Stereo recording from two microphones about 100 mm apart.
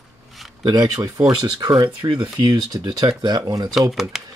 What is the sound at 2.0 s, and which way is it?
Speech, 55° right (ahead or behind).